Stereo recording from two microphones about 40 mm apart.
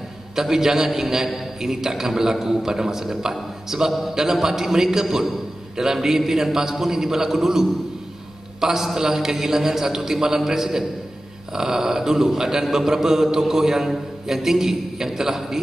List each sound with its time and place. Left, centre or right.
0.4 s a man's voice: centre